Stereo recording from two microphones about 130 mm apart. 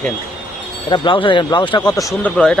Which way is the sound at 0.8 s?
40° left (ahead or behind).